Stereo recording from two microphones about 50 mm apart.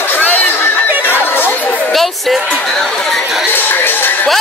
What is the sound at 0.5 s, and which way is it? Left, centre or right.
Chatter, left.